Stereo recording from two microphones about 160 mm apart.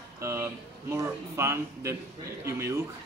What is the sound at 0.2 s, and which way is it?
A man's voice, 15° right (ahead or behind).